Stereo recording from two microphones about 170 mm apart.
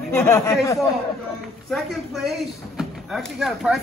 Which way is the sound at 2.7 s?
Centre (ahead or behind).